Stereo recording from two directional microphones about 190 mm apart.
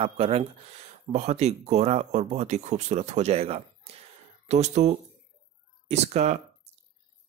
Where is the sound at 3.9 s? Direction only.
30° right (ahead or behind).